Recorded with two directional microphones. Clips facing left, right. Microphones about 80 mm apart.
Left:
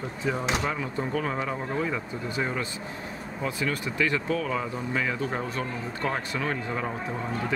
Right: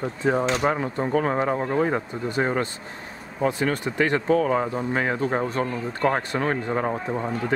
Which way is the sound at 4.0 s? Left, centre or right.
Right.